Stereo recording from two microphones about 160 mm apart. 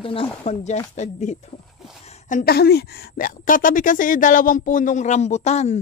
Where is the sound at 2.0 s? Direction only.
45° left (ahead or behind).